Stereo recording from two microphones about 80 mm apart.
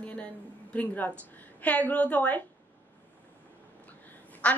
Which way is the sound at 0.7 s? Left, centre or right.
Centre.